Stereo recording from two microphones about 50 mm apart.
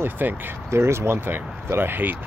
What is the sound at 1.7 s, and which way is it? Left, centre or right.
Speech, right.